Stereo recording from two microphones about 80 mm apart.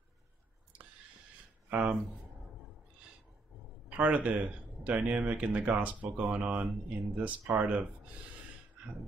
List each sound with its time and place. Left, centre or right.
1.7 s speech: right
3.9 s speech: centre